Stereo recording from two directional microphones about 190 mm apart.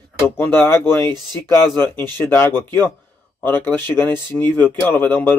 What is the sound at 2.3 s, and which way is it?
Speech, 15° left (ahead or behind).